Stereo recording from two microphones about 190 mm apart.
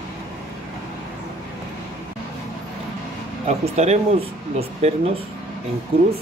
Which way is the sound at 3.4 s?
35° right (ahead or behind).